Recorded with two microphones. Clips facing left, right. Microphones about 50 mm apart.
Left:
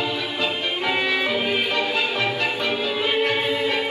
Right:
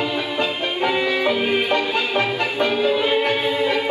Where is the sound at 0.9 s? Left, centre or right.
Left.